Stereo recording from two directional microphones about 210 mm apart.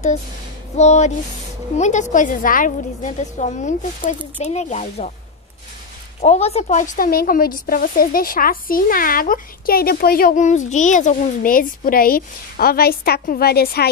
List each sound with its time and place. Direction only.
0.7 s a woman's voice: 35° left (ahead or behind)
6.2 s speech: 30° left (ahead or behind); by 13.8 s 50° left (ahead or behind)